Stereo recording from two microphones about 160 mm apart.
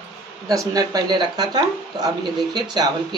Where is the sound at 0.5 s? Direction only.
20° right (ahead or behind).